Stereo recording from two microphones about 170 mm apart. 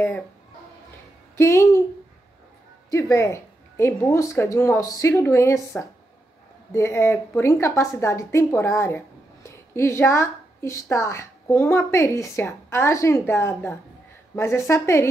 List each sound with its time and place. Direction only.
1.3 s a woman's voice: 15° left (ahead or behind)
2.9 s a woman's voice: 15° left (ahead or behind)